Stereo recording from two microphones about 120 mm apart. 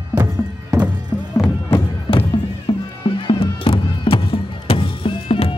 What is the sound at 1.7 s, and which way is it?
Music, 45° left (ahead or behind).